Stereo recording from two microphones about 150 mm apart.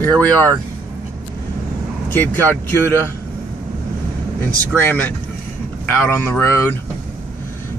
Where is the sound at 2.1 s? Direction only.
15° left (ahead or behind).